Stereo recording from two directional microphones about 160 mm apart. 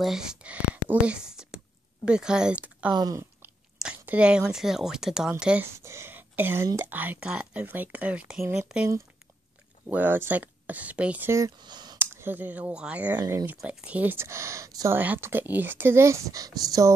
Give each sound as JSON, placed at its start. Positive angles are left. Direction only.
{"t": 0.0, "sound": "speech", "side_deg": -5}
{"t": 2.9, "sound": "speech", "side_deg": -25}
{"t": 3.7, "sound": "speech", "side_deg": -5}
{"t": 9.8, "sound": "speech", "side_deg": -10}
{"t": 12.0, "sound": "speech", "side_deg": -15}
{"t": 13.2, "sound": "speech", "side_deg": -20}
{"t": 13.5, "sound": "speech", "side_deg": -5}